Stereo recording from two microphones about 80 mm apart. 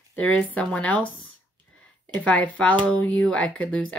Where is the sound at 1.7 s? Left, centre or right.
Centre.